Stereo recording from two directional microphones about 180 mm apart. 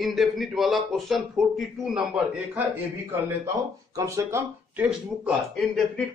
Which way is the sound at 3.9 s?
20° right (ahead or behind).